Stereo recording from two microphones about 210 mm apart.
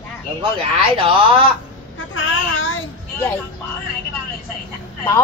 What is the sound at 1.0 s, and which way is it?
Speech, 25° right (ahead or behind).